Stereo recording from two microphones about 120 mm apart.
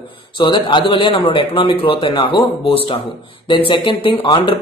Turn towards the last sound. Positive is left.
turn(degrees=45)  # may be behind; listen again after turning